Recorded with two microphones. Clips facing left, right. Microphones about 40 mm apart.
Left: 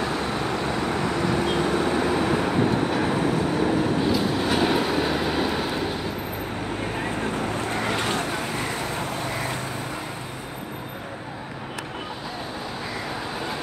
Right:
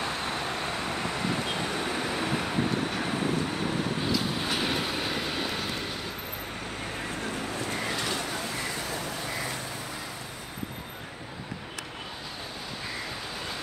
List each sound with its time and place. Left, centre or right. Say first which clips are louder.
0.7 s vehicle: left 6 dB; centre
4.2 s train: left 7 dB; centre
7.8 s vehicle: left 6 dB; left